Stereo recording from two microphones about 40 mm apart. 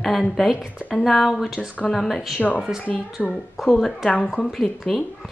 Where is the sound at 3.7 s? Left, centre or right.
Centre.